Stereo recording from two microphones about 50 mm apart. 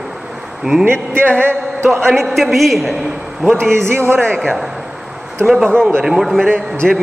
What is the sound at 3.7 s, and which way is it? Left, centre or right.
Speech, right.